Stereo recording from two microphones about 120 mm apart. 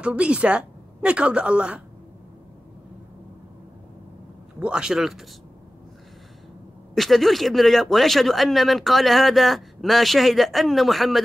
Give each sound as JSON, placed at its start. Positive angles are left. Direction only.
{"t": 0.0, "sound": "a woman's voice", "side_deg": -10}
{"t": 4.6, "sound": "speech", "side_deg": -10}
{"t": 7.0, "sound": "speech", "side_deg": 0}